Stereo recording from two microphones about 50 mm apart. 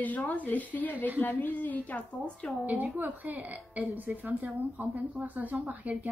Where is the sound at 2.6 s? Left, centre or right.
Right.